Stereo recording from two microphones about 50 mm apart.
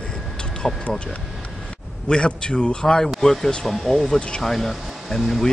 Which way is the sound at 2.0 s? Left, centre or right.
Centre.